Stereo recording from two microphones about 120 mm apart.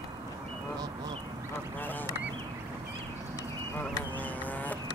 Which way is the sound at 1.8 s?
15° left (ahead or behind).